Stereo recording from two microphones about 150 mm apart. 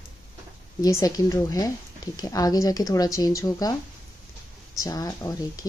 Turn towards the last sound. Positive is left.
turn(degrees=25)  # may be behind; listen again after turning